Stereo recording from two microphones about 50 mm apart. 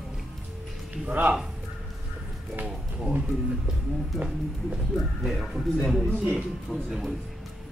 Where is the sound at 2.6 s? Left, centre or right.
Right.